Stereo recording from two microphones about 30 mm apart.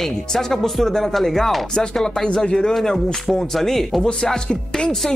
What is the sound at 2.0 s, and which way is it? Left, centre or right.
Speech, left.